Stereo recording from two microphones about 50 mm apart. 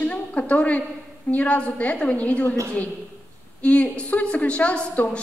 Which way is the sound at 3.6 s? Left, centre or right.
Left.